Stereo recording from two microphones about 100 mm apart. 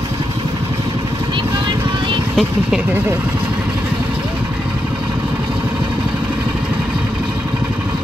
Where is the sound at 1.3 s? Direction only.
55° right (ahead or behind).